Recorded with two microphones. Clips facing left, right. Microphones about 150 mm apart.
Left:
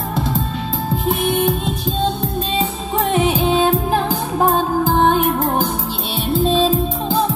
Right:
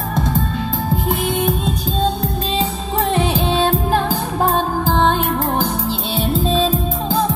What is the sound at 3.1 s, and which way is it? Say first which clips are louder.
Music: left 3 dB; 10° left (ahead or behind).